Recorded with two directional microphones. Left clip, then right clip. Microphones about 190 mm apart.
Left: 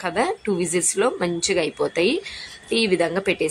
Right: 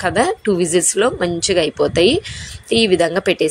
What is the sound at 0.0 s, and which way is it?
A woman's voice, 20° right (ahead or behind).